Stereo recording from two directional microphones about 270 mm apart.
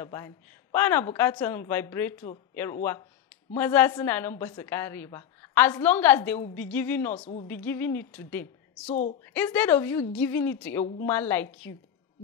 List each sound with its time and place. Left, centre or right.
0.0 s a woman's voice: centre
7.2 s speech: left
7.4 s a woman's voice: centre